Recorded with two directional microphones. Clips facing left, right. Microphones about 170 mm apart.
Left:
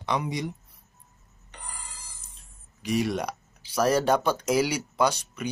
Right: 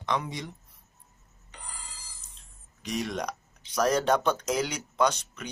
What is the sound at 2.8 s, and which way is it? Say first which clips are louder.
Speech: left 5 dB; 10° left (ahead or behind).